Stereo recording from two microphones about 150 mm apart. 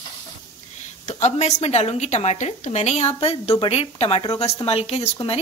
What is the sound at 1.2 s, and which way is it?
A woman's voice, 50° left (ahead or behind).